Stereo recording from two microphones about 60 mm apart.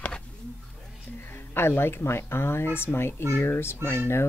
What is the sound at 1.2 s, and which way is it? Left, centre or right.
Speech, left.